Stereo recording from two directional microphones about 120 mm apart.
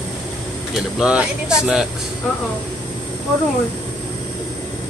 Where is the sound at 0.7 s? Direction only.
5° right (ahead or behind).